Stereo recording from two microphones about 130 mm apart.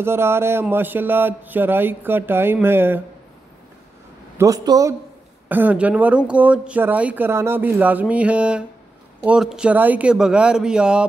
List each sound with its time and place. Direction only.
0.0 s speech: 20° right (ahead or behind)
4.4 s speech: 25° right (ahead or behind)
5.5 s speech: 15° right (ahead or behind)